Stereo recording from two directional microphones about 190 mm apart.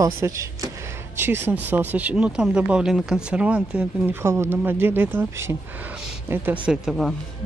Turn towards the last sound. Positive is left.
turn(degrees=0)  # may be behind; listen again after turning